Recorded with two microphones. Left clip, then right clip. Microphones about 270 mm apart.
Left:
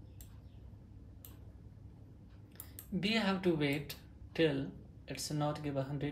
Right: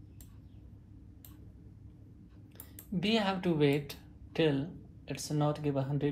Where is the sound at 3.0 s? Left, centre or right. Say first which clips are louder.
Right 3 dB; right.